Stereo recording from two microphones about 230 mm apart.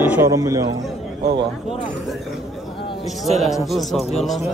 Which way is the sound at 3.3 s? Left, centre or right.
Centre.